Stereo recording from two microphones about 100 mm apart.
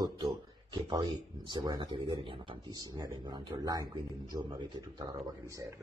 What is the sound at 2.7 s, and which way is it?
Speech, 40° right (ahead or behind).